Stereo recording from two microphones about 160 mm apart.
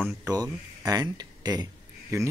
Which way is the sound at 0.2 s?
20° right (ahead or behind).